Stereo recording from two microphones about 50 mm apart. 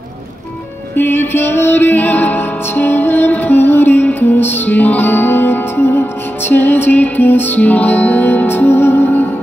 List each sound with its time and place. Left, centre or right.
0.9 s music: left